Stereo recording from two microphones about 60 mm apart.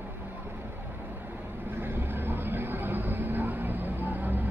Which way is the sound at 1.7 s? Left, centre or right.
Right.